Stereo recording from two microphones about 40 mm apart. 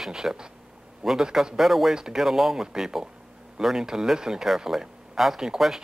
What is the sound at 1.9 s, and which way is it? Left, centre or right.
Speech, centre.